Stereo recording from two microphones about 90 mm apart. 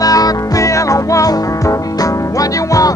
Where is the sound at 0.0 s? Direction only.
45° left (ahead or behind).